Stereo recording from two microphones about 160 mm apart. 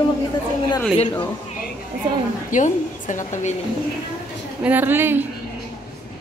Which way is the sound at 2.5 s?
55° left (ahead or behind).